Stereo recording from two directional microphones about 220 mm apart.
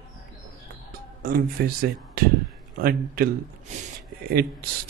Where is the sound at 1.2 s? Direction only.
40° right (ahead or behind).